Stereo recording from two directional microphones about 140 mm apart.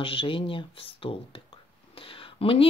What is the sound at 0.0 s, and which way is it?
Speech, 40° left (ahead or behind).